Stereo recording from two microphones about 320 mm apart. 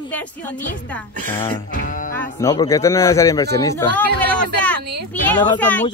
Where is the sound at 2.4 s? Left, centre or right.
Centre.